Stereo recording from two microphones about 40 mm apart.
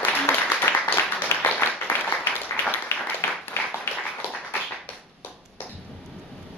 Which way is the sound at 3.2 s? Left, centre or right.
Left.